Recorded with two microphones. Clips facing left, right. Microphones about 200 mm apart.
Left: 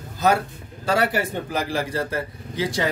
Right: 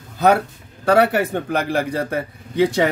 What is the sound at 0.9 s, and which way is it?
A man's voice, 60° right (ahead or behind).